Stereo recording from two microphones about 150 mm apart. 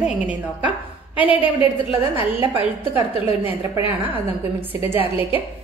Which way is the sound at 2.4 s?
35° right (ahead or behind).